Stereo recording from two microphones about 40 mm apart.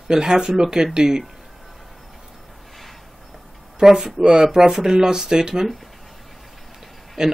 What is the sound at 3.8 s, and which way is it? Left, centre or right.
Speech, centre.